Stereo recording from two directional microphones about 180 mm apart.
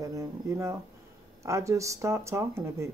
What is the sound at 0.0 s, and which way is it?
Speech, 15° right (ahead or behind).